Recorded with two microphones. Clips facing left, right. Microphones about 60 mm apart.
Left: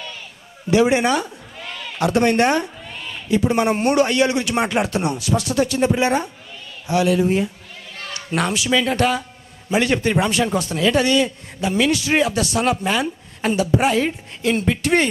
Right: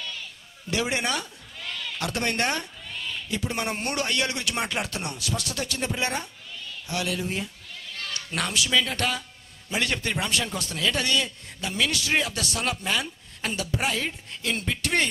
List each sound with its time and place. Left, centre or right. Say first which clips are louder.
0.7 s a man's voice: left 11 dB; centre